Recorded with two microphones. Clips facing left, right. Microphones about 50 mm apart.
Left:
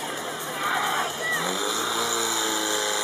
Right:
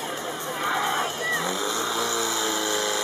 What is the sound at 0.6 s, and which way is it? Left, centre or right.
Vehicle, centre.